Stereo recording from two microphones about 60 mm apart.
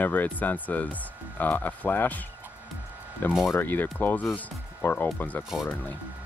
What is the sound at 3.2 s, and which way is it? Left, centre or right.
Speech, left.